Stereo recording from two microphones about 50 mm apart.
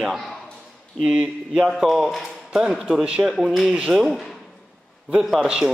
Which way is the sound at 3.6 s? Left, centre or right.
Right.